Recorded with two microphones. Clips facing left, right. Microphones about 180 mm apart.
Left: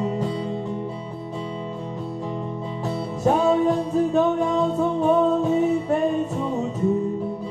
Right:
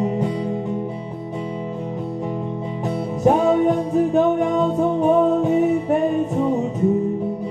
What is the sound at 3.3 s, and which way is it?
Music, 20° right (ahead or behind).